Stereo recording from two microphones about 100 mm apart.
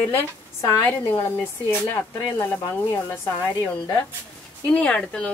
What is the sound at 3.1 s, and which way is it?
Speech, 45° left (ahead or behind).